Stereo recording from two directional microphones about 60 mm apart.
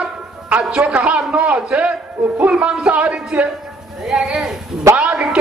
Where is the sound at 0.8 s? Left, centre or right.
Right.